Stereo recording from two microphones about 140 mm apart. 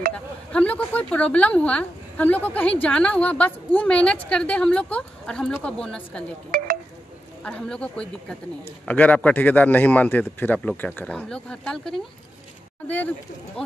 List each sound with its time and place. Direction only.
0.5 s a woman's voice: 10° left (ahead or behind)
7.4 s a woman's voice: 5° left (ahead or behind)